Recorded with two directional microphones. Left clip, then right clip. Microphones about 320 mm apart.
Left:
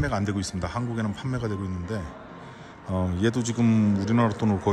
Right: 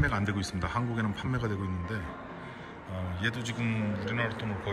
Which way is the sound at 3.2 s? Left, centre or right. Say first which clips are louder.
Left 6 dB; centre.